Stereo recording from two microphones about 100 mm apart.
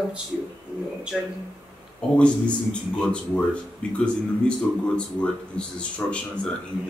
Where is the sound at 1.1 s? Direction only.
5° right (ahead or behind).